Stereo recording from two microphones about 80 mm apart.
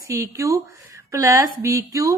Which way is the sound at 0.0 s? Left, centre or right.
Right.